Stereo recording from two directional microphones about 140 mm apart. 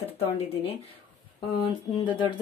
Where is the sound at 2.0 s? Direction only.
35° left (ahead or behind).